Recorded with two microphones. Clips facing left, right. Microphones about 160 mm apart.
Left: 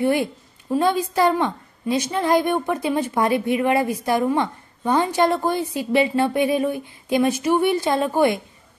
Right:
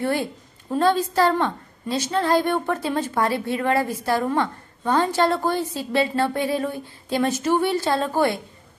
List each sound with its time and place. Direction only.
0.0 s a woman's voice: 15° left (ahead or behind)